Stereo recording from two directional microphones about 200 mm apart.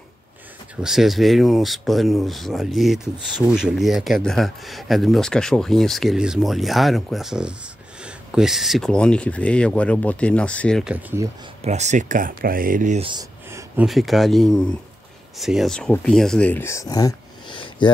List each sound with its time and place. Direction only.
0.8 s speech: centre (ahead or behind)
11.6 s speech: 35° right (ahead or behind)
13.0 s a sound: 20° right (ahead or behind)
13.8 s speech: centre (ahead or behind); by 17.9 s 25° left (ahead or behind)